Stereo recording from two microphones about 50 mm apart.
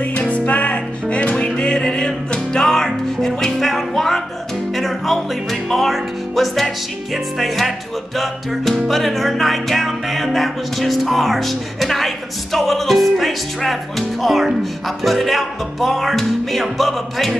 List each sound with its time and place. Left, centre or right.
0.0 s music: left; by 6.7 s centre
7.3 s speech: centre
8.8 s speech: centre